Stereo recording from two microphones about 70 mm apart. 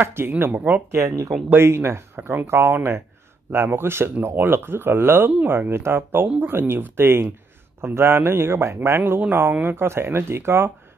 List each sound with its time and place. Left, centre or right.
0.0 s speech: right
0.9 s speech: right
1.5 s speech: right